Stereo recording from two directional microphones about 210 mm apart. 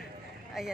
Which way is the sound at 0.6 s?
Centre (ahead or behind).